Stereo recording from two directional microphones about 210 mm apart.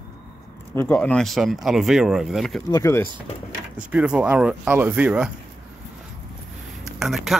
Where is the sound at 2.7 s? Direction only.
10° left (ahead or behind).